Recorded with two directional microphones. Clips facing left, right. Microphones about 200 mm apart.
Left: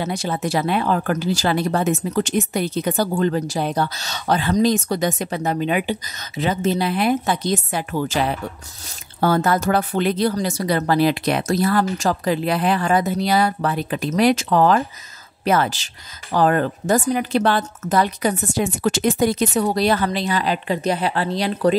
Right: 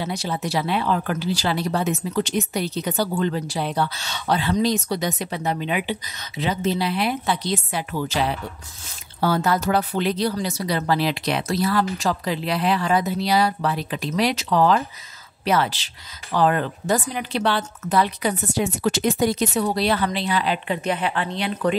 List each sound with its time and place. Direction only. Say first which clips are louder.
0.0 s speech: left 3 dB; 50° left (ahead or behind); by 21.7 s 35° left (ahead or behind)